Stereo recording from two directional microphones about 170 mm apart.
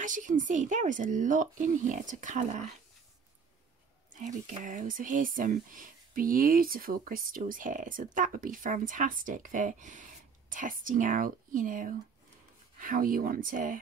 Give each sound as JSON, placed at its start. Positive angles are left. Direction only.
{"t": 0.0, "sound": "speech", "side_deg": -50}
{"t": 4.1, "sound": "speech", "side_deg": -45}